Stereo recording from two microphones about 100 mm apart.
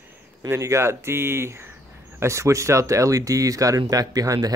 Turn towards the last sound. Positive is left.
turn(degrees=-40)  # may be behind; listen again after turning